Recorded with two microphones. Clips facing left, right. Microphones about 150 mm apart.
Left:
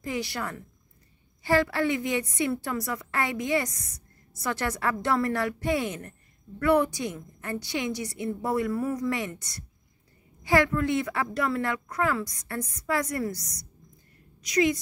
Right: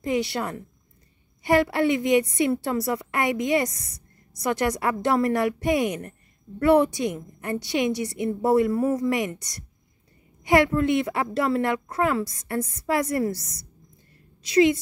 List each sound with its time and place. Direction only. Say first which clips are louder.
0.0 s a woman's voice: right 6 dB; 20° right (ahead or behind)